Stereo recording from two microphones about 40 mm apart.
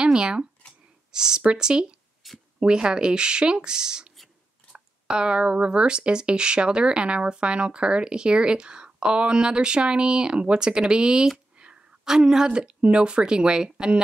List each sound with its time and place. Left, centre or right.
0.0 s speech: right
2.2 s a sound: centre
2.6 s speech: right